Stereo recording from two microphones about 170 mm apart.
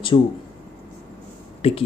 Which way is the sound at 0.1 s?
30° left (ahead or behind).